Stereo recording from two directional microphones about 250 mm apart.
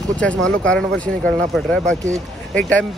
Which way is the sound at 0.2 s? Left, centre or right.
Centre.